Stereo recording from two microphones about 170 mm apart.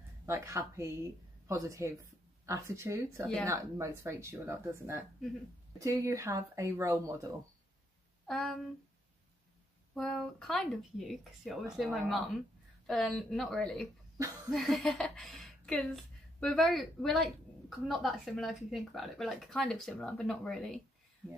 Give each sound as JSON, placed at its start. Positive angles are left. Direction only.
{"t": 0.3, "sound": "a woman's voice", "side_deg": -15}
{"t": 8.3, "sound": "a woman's voice", "side_deg": 0}
{"t": 9.9, "sound": "a woman's voice", "side_deg": 5}
{"t": 14.1, "sound": "speech", "side_deg": -20}
{"t": 14.5, "sound": "a woman's voice", "side_deg": 0}